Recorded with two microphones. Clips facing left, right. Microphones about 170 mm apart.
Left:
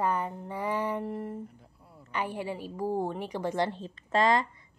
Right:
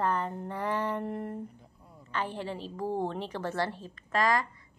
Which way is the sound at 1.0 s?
Centre (ahead or behind).